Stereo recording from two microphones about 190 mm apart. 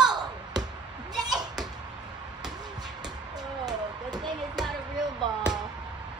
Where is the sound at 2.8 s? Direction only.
20° right (ahead or behind).